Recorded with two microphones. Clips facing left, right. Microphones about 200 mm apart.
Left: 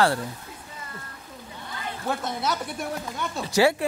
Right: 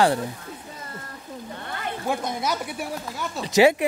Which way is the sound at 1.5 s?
60° right (ahead or behind).